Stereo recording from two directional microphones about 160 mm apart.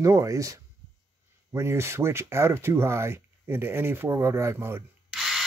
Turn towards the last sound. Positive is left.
turn(degrees=0)  # may be behind; listen again after turning